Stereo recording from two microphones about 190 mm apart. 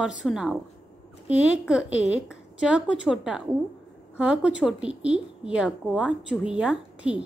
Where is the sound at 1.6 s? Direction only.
5° right (ahead or behind).